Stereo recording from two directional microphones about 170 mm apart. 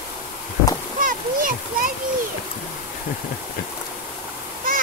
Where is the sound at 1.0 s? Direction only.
50° right (ahead or behind).